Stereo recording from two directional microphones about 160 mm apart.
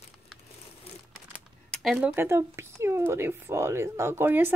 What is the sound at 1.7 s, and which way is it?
Speech, centre (ahead or behind).